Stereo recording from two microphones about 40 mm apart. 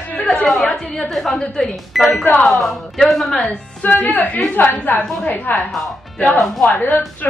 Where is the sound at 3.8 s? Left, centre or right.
Left.